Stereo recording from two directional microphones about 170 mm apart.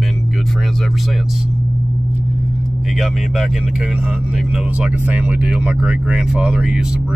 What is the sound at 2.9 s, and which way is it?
Speech, centre (ahead or behind).